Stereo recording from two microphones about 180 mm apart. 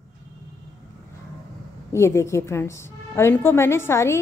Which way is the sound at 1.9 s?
15° left (ahead or behind).